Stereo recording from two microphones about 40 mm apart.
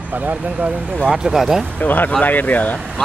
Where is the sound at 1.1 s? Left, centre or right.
Centre.